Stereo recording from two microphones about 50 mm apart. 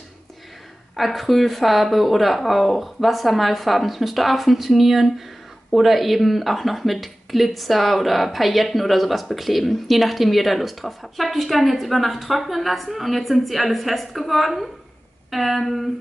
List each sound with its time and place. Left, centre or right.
0.9 s speech: centre